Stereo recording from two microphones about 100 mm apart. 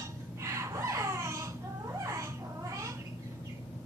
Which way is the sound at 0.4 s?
30° right (ahead or behind).